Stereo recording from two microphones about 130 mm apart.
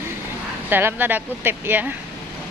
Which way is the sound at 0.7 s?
15° right (ahead or behind).